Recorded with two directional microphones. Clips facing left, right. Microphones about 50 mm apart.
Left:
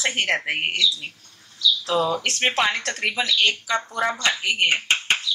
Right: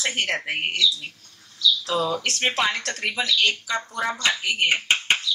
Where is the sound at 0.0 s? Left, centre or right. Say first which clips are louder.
Left 3 dB; left.